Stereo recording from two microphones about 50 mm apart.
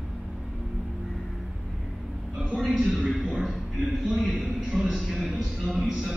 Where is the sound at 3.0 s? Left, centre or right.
Centre.